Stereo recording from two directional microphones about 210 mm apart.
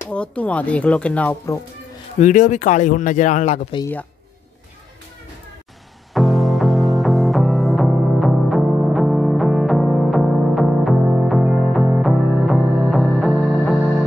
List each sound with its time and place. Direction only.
0.1 s speech: 5° left (ahead or behind)
2.1 s speech: 35° left (ahead or behind)
6.1 s music: centre (ahead or behind)